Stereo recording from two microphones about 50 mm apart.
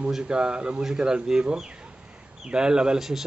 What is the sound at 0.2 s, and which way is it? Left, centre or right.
A man's voice, centre.